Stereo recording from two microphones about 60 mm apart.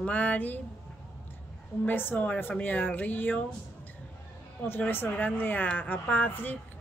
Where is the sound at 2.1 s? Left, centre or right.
Left.